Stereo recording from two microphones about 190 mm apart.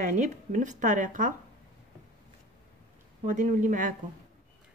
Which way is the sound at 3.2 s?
40° right (ahead or behind).